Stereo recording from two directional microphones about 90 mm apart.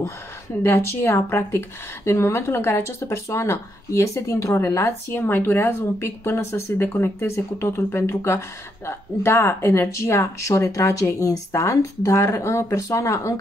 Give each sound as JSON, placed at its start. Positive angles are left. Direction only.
{"t": 0.6, "sound": "speech", "side_deg": 25}